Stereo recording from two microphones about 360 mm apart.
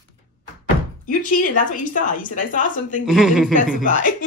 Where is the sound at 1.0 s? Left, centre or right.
Left.